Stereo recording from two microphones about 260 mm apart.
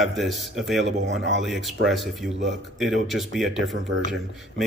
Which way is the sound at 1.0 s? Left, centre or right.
Right.